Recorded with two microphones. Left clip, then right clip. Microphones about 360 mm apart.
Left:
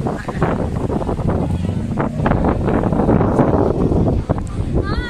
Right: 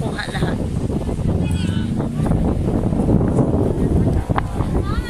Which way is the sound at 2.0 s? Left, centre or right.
Left.